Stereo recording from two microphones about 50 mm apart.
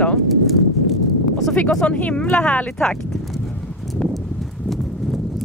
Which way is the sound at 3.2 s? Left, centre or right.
Centre.